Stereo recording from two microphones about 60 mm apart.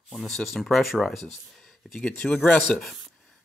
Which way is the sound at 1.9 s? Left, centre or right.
Centre.